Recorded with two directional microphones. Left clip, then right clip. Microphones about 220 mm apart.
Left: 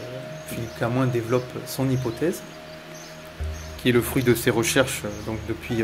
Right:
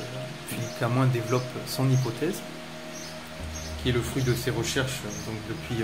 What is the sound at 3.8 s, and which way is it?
Speech, 30° left (ahead or behind).